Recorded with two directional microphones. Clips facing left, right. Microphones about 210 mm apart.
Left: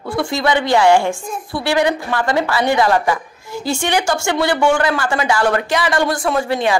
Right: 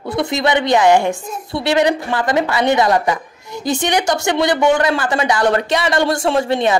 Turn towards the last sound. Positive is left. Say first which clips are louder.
# right 2 dB
turn(degrees=-25)  # may be behind; listen again after turning